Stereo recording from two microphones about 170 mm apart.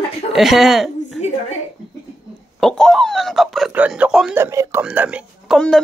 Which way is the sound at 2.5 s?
5° left (ahead or behind).